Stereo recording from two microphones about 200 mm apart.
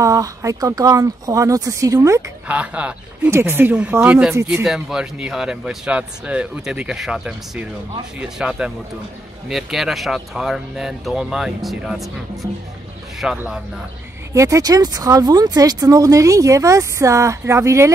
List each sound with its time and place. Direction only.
0.0 s speech: 15° right (ahead or behind)
14.3 s speech: 15° right (ahead or behind)